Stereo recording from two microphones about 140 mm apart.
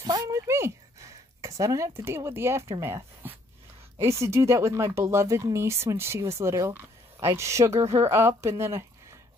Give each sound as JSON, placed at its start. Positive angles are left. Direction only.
{"t": 0.0, "sound": "a woman's voice", "side_deg": -25}